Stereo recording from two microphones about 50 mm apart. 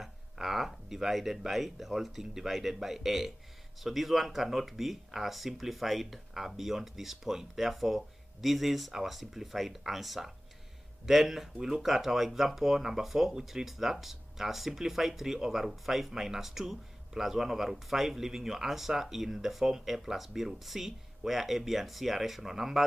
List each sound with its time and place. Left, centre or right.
0.0 s speech: centre
11.5 s speech: centre
11.8 s speech: centre